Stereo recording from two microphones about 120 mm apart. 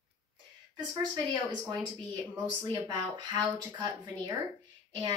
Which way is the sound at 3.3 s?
35° right (ahead or behind).